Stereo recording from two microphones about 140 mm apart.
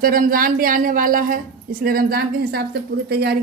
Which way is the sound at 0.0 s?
90° right.